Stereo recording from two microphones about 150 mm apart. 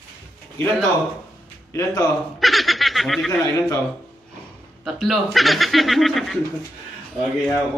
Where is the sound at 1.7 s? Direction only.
20° left (ahead or behind).